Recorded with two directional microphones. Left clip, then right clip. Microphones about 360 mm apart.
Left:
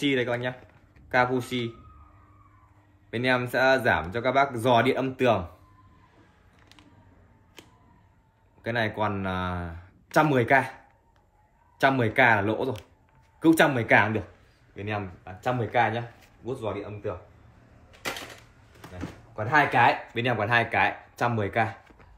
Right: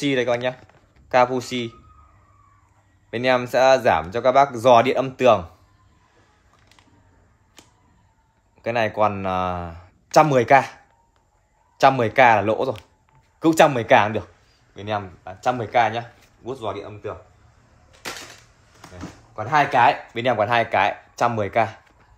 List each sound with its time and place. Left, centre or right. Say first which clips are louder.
0.0 s speech: right 5 dB; centre
3.1 s speech: right 6 dB; centre
8.6 s speech: right 7 dB; centre
11.8 s speech: right 6 dB; centre
18.8 s speech: right 1 dB; centre